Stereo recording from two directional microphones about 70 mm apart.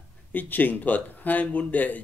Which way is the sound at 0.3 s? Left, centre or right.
Left.